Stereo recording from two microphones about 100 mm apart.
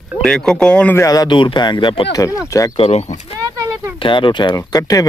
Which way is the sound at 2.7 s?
80° left.